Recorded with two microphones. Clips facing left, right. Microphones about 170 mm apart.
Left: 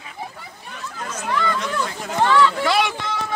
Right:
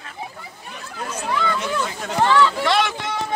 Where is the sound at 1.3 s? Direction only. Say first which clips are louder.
Even; 5° right (ahead or behind).